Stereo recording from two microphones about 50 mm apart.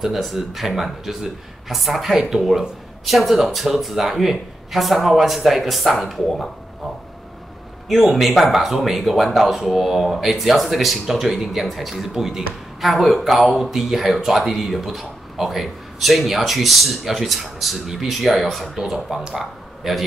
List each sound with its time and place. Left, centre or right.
0.0 s speech: centre
8.0 s a man's voice: centre